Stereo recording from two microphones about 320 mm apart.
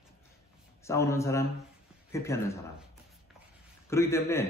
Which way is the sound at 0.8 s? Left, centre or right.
Centre.